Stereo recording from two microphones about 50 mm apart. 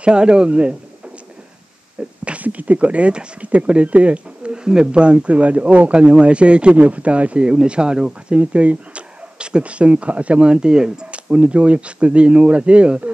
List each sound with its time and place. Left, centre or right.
0.0 s speech: centre
2.2 s speech: right